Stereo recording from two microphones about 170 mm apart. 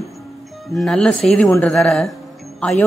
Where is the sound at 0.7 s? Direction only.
5° left (ahead or behind).